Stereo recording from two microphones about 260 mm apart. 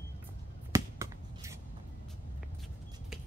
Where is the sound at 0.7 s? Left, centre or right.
Centre.